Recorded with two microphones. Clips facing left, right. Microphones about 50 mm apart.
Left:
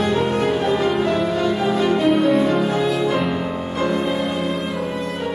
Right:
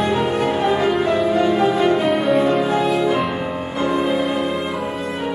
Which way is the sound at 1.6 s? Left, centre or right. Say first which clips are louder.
Right 2 dB; centre.